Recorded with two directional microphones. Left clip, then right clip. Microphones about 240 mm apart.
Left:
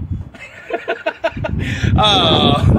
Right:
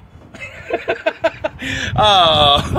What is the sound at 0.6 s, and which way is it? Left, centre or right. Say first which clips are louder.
Speech: right 1 dB; centre.